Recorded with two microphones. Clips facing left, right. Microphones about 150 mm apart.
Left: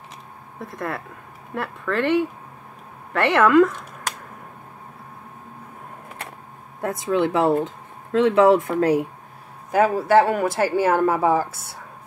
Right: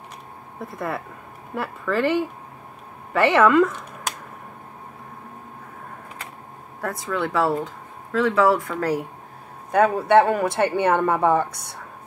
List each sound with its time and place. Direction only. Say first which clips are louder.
0.7 s speech: right 1 dB; centre (ahead or behind)
6.8 s speech: left 5 dB; 20° left (ahead or behind)
9.7 s speech: even; 5° left (ahead or behind)